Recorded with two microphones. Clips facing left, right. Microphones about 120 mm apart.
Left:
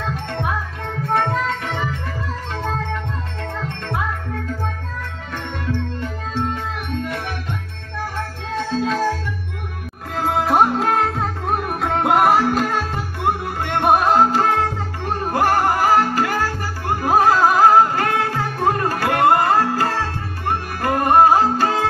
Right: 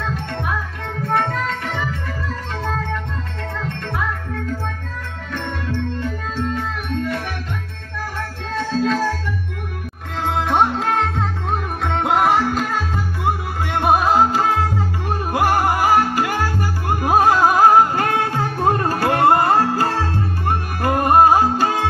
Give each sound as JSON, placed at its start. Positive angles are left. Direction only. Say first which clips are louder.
{"t": 10.2, "sound": "music", "louder": "left 1 dB", "side_deg": 5}